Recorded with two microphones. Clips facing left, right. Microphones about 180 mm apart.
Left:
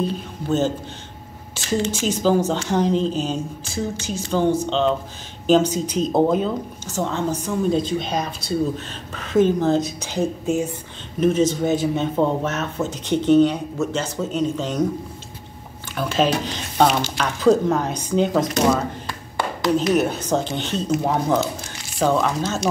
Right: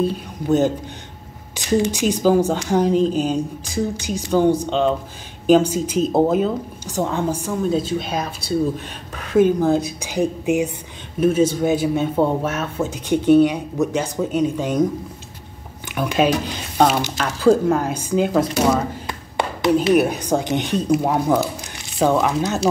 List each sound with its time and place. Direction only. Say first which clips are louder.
0.5 s a woman's voice: right 4 dB; 15° right (ahead or behind)
15.9 s a woman's voice: right 2 dB; 15° right (ahead or behind)
19.0 s a sound: right 2 dB; 20° right (ahead or behind)
19.9 s a woman's voice: right 3 dB; 10° right (ahead or behind)